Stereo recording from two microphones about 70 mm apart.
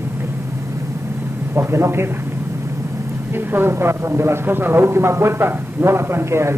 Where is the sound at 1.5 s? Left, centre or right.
Right.